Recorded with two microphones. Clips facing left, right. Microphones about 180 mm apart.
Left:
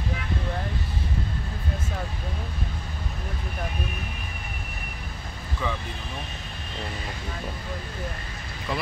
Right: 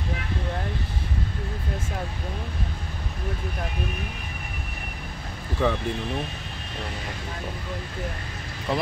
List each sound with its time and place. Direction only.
5.6 s speech: 70° right (ahead or behind)